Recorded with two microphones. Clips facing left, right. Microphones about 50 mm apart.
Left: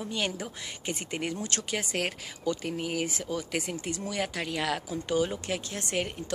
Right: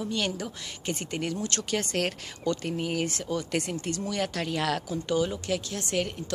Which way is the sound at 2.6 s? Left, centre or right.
Centre.